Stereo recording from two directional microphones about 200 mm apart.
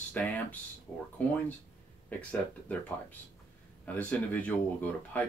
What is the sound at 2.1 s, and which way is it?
Speech, 10° left (ahead or behind).